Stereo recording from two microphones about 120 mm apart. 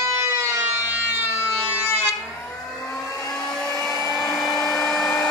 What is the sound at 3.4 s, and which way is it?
Vehicle, 5° left (ahead or behind).